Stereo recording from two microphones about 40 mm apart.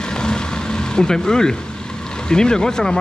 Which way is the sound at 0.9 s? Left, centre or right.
Centre.